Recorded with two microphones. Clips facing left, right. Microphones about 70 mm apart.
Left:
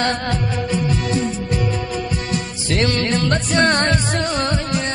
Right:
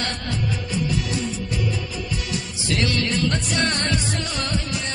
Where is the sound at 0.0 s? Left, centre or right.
Left.